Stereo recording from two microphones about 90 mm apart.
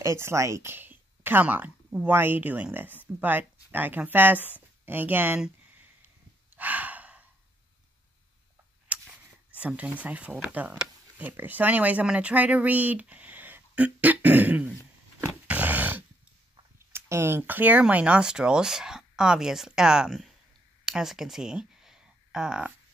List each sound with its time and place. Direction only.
0.0 s speech: 30° right (ahead or behind)
6.5 s sigh: 20° right (ahead or behind)
8.9 s a sound: 15° right (ahead or behind)
9.5 s speech: 15° right (ahead or behind)
15.4 s dog: 20° right (ahead or behind)
16.7 s speech: 30° right (ahead or behind); by 20.2 s 5° right (ahead or behind)
20.8 s a sound: 5° right (ahead or behind)